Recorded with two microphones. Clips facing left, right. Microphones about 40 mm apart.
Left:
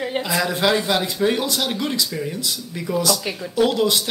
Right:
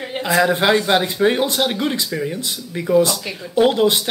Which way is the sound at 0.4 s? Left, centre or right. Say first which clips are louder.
Right 5 dB; right.